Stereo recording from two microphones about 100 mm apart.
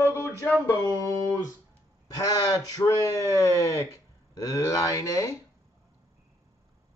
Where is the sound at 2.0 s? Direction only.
35° left (ahead or behind).